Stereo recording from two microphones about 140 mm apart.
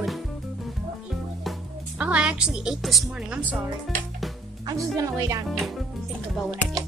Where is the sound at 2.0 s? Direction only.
10° right (ahead or behind).